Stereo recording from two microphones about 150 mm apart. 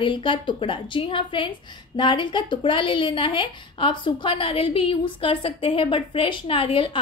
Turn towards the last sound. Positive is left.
turn(degrees=35)  # may be behind; listen again after turning